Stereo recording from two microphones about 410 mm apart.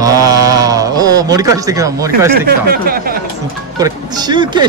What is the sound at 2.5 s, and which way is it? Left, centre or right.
Speech, right.